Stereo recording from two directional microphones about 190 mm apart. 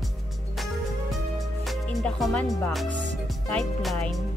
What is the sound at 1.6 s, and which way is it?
Music, centre (ahead or behind).